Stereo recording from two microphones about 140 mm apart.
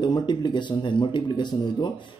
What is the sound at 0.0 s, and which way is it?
Speech, 30° left (ahead or behind).